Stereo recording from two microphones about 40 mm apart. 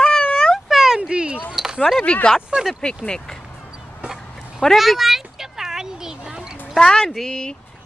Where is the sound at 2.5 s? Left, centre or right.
Right.